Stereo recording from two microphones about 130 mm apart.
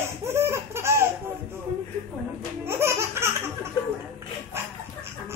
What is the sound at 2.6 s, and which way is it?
Laughter, 20° right (ahead or behind).